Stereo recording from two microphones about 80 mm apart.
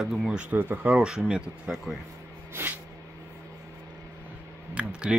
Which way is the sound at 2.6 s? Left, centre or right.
Right.